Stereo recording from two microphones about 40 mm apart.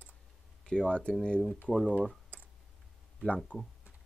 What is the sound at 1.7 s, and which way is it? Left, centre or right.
Speech, centre.